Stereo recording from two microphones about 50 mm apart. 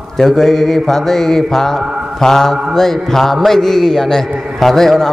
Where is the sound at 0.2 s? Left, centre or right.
Centre.